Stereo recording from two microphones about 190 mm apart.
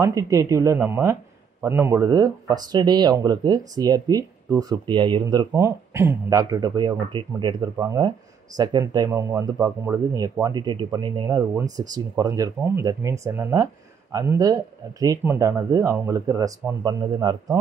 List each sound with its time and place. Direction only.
0.0 s speech: 15° right (ahead or behind)